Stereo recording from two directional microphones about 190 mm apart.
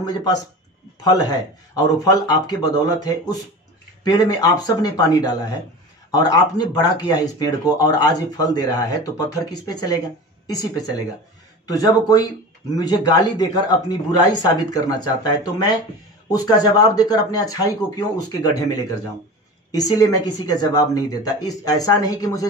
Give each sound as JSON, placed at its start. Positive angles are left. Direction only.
{"t": 0.0, "sound": "a woman's voice", "side_deg": 20}